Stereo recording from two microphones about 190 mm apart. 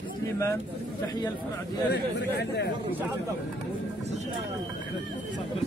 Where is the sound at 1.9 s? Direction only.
65° left (ahead or behind).